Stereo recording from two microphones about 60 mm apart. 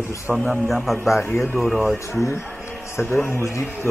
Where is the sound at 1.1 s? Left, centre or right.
Left.